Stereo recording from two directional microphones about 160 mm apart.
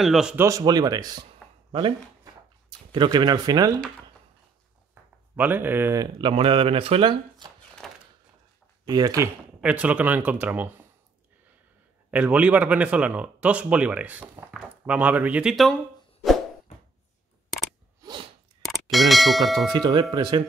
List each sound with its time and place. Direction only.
0.0 s speech: 5° right (ahead or behind)
0.4 s speech: 20° right (ahead or behind)
5.3 s speech: 10° right (ahead or behind)
6.1 s speech: 35° right (ahead or behind)
7.8 s a sound: 5° left (ahead or behind)
8.8 s speech: 25° right (ahead or behind)
9.6 s speech: 10° right (ahead or behind)
12.1 s speech: 10° right (ahead or behind)
18.0 s a sound: 30° right (ahead or behind)
18.7 s speech: centre (ahead or behind)
19.7 s speech: 25° right (ahead or behind)